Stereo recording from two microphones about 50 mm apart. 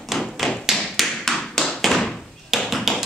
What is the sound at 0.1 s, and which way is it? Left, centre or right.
Tap, centre.